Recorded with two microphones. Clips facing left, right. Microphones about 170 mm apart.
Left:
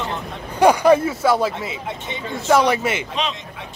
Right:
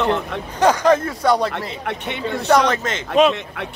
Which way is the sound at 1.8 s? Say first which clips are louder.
Right 3 dB; 65° right (ahead or behind).